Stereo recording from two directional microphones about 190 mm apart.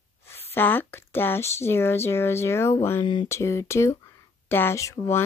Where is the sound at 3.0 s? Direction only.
25° left (ahead or behind).